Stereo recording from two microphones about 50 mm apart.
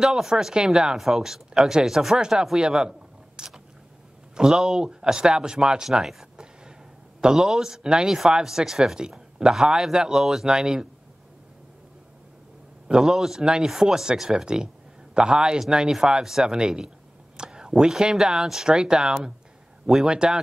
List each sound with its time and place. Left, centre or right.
0.0 s speech: centre
2.4 s a sound: centre
4.4 s speech: centre
12.8 s speech: centre